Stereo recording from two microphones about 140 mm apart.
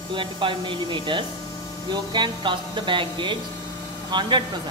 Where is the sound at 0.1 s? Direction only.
35° right (ahead or behind).